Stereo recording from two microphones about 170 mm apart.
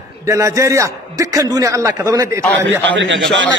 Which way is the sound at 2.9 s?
90° right.